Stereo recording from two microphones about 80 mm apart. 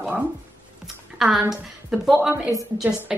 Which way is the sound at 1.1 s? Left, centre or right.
Centre.